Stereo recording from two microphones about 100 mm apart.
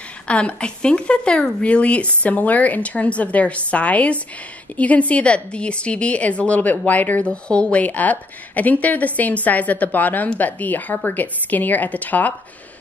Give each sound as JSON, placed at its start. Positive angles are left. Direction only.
{"t": 0.3, "sound": "a woman's voice", "side_deg": 10}